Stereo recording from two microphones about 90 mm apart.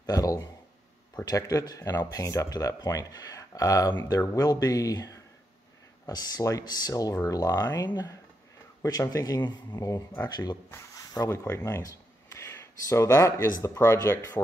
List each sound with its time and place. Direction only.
0.0 s a sound: 40° left (ahead or behind)
1.2 s speech: 45° left (ahead or behind)
9.8 s speech: 40° left (ahead or behind)
10.2 s speech: 50° left (ahead or behind)
11.2 s speech: 30° left (ahead or behind)